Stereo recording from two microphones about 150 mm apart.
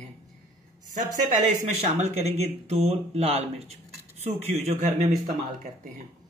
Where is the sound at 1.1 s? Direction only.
55° right (ahead or behind).